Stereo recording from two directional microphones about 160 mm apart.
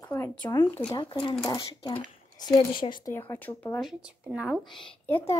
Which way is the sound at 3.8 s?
5° right (ahead or behind).